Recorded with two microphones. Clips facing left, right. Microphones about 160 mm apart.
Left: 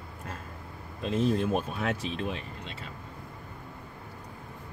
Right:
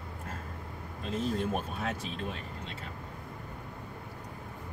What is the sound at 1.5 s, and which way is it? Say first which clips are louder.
Speech: left 4 dB; 80° left.